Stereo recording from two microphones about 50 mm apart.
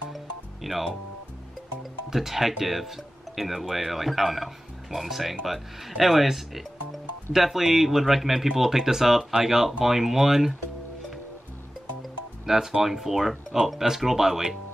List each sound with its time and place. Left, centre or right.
0.1 s music: centre
1.8 s speech: centre
12.4 s speech: centre